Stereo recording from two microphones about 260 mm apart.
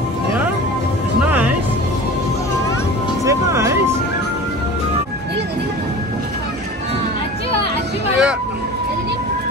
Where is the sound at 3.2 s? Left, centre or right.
Centre.